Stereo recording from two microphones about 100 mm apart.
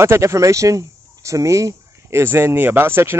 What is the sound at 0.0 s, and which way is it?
Speech, 25° right (ahead or behind).